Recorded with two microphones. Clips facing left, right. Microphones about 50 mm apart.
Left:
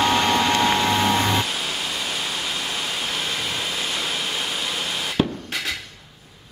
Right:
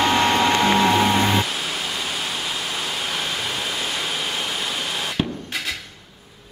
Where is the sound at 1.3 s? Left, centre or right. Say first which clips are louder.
Right 1 dB; centre.